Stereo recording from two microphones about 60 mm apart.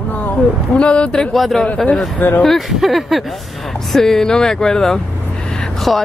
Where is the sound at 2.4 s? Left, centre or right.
Centre.